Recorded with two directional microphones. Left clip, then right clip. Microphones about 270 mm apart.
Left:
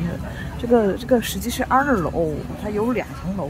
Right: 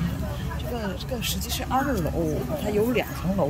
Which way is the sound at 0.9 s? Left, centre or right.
Centre.